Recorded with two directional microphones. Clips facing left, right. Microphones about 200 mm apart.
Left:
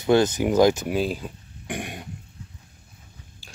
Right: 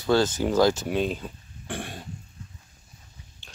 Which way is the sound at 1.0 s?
5° left (ahead or behind).